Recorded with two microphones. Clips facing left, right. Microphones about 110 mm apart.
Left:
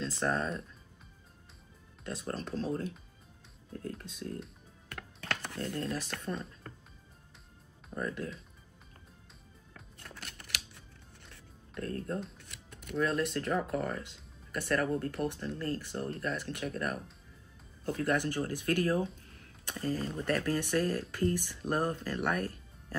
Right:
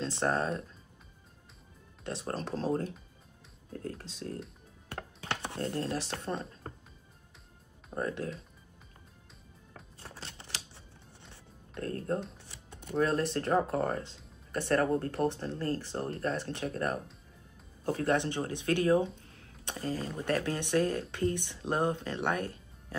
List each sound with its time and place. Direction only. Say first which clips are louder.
0.0 s speech: right 2 dB; 35° right (ahead or behind)
2.0 s speech: right 2 dB; 35° right (ahead or behind)
4.0 s speech: right 1 dB; 30° right (ahead or behind)
4.8 s computer keyboard: right 1 dB; 25° right (ahead or behind)
6.7 s music: right 4 dB; 30° right (ahead or behind)
7.9 s speech: right 2 dB; 35° right (ahead or behind)
9.9 s typewriter: right 1 dB; 30° right (ahead or behind)
11.3 s music: right 1 dB; 35° right (ahead or behind)
12.6 s speech: right 3 dB; 30° right (ahead or behind)
18.1 s speech: right 1 dB; 25° right (ahead or behind)